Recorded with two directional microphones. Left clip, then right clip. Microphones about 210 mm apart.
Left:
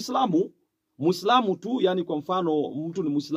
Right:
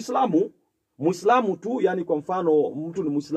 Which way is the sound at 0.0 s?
30° left (ahead or behind).